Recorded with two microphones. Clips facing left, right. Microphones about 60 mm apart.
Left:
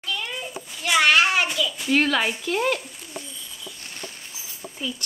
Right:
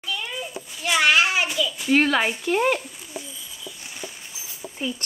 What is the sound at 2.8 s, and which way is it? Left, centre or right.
Bird, centre.